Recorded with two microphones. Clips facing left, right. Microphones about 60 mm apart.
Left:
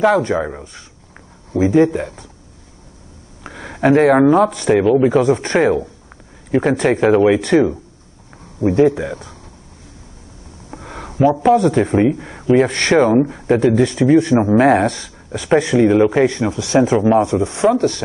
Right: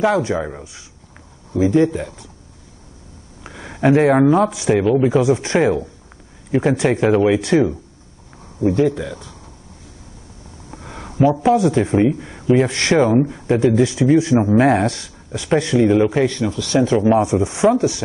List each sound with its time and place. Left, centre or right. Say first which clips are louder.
0.3 s speech: left 3 dB; centre
1.7 s speech: left 3 dB; centre
3.4 s speech: left 1 dB; centre
5.6 s speech: left 3 dB; centre
6.5 s speech: left 2 dB; centre
8.5 s speech: left 3 dB; left
10.7 s a sound: left 3 dB; centre
11.1 s speech: left 2 dB; centre
12.4 s speech: left 2 dB; centre
13.0 s speech: left 2 dB; centre
14.3 s speech: left 2 dB; centre
17.2 s speech: left 1 dB; centre